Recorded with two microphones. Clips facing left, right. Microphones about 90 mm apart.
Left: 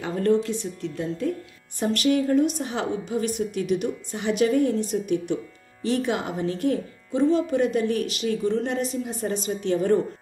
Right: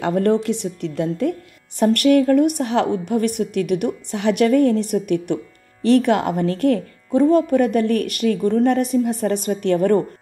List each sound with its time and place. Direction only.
0.0 s a woman's voice: 65° right (ahead or behind)